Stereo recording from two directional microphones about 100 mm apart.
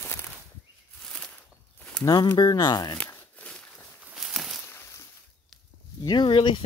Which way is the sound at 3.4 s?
10° left (ahead or behind).